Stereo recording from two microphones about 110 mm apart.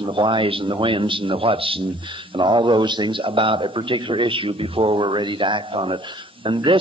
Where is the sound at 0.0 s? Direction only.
50° right (ahead or behind).